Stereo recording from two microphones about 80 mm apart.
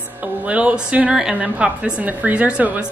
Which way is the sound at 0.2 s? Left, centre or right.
Centre.